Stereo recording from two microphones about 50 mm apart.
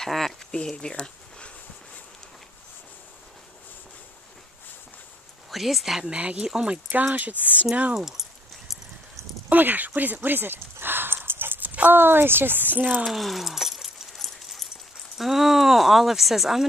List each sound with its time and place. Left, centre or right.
0.0 s a sound: centre
0.6 s speech: centre
5.5 s speech: centre
6.0 s speech: right
6.9 s speech: right
7.9 s a sound: centre
9.5 s a sound: right
11.7 s speech: right
13.0 s dog: centre
15.1 s speech: centre